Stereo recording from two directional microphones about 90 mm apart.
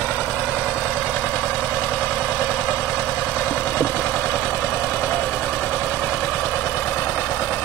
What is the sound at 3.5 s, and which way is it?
Engine, 10° left (ahead or behind).